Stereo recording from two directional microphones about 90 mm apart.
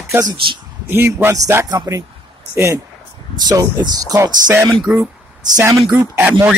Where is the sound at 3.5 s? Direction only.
45° right (ahead or behind).